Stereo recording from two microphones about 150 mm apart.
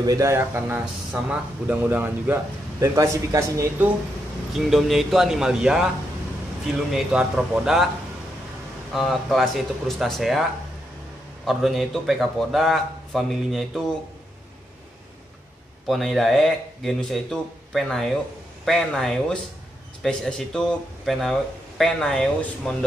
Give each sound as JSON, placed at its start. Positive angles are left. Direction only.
{"t": 0.0, "sound": "speech", "side_deg": -25}
{"t": 4.6, "sound": "speech", "side_deg": 0}
{"t": 6.9, "sound": "speech", "side_deg": -5}
{"t": 8.9, "sound": "speech", "side_deg": 0}
{"t": 11.4, "sound": "speech", "side_deg": 0}
{"t": 15.9, "sound": "speech", "side_deg": 0}